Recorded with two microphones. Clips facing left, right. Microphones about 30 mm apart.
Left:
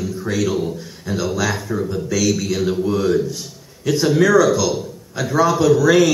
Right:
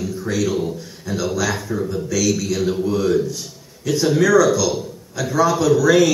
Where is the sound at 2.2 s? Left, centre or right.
Left.